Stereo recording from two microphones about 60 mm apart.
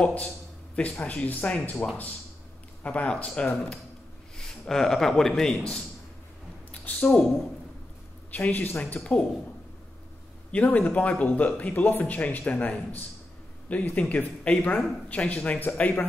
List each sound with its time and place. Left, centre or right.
0.0 s speech: left
4.4 s a man's voice: centre
6.7 s a sound: left
8.3 s speech: left
10.5 s speech: left